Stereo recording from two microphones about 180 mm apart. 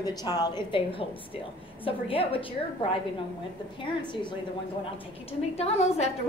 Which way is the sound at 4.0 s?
25° left (ahead or behind).